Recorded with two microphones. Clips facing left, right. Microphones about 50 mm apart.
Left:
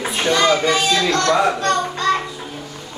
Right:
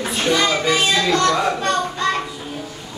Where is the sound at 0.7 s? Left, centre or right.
Centre.